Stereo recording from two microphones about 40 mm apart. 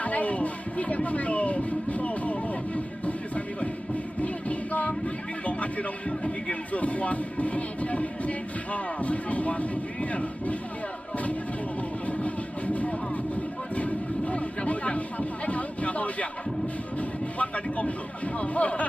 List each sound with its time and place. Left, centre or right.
0.0 s music: left
12.1 s vehicle: left
13.7 s a sound: left
17.4 s a man's voice: left